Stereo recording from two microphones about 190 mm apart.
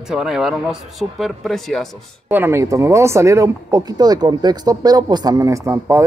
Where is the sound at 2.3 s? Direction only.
10° right (ahead or behind).